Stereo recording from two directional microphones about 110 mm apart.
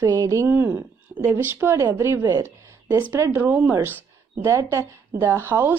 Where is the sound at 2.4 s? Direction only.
25° right (ahead or behind).